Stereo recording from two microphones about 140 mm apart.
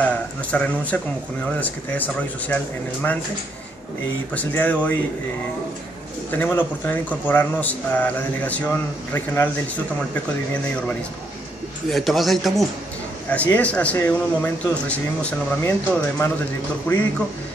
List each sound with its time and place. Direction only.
0.0 s speech: 10° left (ahead or behind)
4.3 s speech: 10° left (ahead or behind)
6.3 s speech: 15° left (ahead or behind)
11.9 s speech: centre (ahead or behind)